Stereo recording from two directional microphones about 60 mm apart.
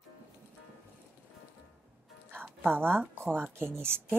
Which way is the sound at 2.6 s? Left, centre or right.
Right.